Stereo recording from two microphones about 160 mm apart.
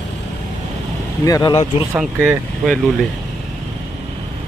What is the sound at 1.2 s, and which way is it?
Speech, 20° left (ahead or behind).